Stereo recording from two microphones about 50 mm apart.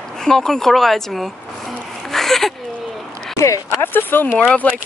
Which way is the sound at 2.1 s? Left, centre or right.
Centre.